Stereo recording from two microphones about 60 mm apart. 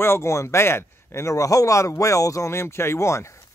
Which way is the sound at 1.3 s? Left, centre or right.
Left.